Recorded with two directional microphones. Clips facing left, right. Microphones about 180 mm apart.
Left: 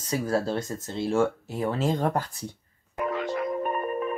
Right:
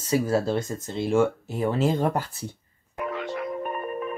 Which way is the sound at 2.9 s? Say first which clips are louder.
Left 2 dB; 40° left (ahead or behind).